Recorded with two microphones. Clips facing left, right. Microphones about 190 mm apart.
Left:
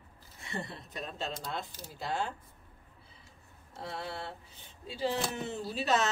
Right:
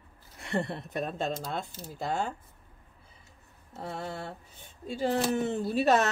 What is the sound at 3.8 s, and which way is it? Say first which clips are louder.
Speech: right 3 dB; 45° right (ahead or behind).